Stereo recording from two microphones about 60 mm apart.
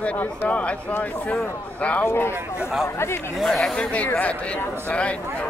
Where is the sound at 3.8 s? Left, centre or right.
Left.